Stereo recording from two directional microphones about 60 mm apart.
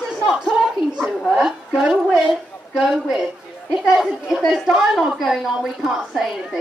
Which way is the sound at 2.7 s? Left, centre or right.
Centre.